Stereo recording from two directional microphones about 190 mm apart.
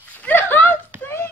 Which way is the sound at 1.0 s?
10° left (ahead or behind).